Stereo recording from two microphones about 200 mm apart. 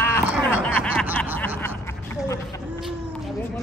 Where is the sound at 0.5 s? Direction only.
10° left (ahead or behind).